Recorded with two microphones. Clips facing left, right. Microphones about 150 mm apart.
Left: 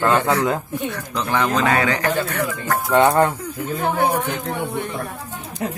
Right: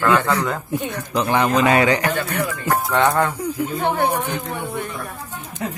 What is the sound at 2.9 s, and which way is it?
Speech, 20° left (ahead or behind).